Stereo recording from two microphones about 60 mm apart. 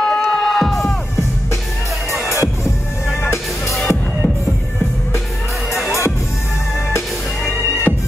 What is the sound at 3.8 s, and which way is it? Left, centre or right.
Music, centre.